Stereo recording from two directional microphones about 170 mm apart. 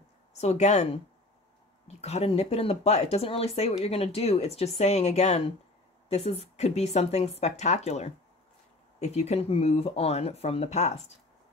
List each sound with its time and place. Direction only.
0.3 s speech: 40° left (ahead or behind)
2.0 s speech: 40° left (ahead or behind)